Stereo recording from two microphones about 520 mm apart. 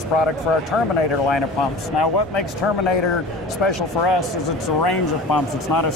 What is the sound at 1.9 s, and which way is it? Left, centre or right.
Speech, left.